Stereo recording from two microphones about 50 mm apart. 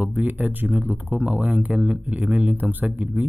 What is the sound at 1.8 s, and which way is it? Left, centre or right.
Speech, right.